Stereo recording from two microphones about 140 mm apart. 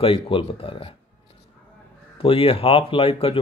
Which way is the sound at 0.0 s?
40° left (ahead or behind).